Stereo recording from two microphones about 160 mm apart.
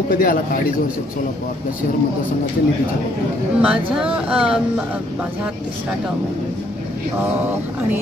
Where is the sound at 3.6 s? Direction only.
5° right (ahead or behind).